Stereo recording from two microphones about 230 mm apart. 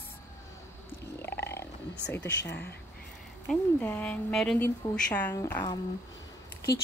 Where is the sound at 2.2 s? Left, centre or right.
Left.